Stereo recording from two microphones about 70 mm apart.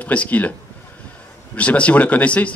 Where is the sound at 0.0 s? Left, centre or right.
Centre.